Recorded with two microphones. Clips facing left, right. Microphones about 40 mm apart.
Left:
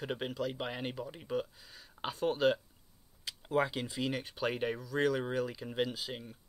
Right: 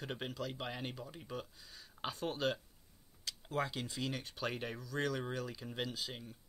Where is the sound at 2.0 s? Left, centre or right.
Centre.